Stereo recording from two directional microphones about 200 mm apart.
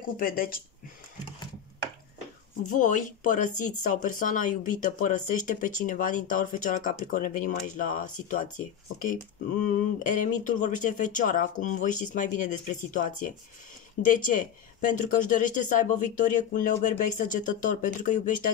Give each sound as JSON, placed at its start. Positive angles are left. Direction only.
{"t": 0.2, "sound": "speech", "side_deg": 45}
{"t": 2.7, "sound": "speech", "side_deg": 40}
{"t": 9.7, "sound": "speech", "side_deg": 45}